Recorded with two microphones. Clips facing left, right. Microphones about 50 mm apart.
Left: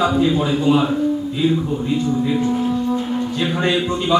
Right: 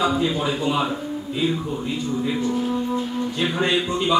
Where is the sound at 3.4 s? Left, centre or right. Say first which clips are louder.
Left 2 dB; centre.